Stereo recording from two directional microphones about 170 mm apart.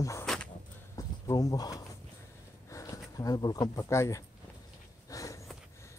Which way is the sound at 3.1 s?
20° left (ahead or behind).